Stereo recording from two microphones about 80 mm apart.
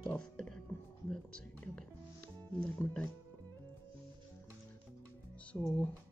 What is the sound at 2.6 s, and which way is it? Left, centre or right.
Speech, centre.